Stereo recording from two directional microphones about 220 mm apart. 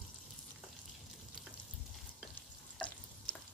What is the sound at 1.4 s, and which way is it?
Frying, centre (ahead or behind).